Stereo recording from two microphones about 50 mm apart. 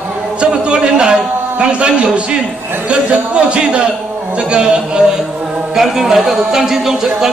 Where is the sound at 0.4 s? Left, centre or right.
Centre.